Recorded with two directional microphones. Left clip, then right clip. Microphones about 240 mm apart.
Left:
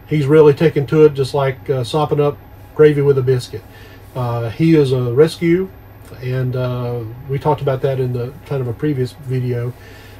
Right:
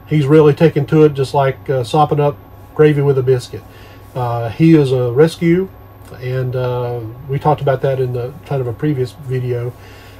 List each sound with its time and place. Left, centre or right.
0.1 s a man's voice: centre